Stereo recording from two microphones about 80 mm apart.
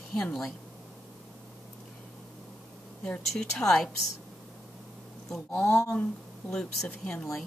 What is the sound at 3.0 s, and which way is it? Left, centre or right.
Speech, centre.